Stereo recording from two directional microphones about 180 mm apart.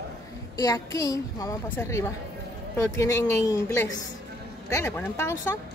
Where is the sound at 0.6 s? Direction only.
20° left (ahead or behind).